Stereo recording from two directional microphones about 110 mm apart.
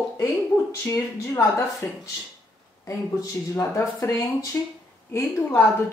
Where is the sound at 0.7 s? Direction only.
25° left (ahead or behind).